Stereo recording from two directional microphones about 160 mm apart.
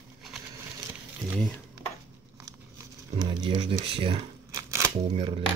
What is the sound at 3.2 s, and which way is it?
Speech, 35° right (ahead or behind).